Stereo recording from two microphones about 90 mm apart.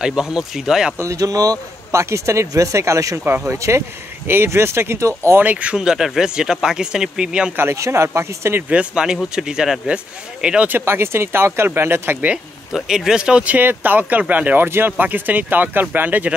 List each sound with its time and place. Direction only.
0.0 s speech: 5° right (ahead or behind)
0.9 s speech: 35° right (ahead or behind)
5.4 s speech: 15° right (ahead or behind)
7.5 s speech: 30° right (ahead or behind)
8.6 s speech: 10° right (ahead or behind)
10.9 s speech: 25° right (ahead or behind)
12.7 s speech: 5° right (ahead or behind)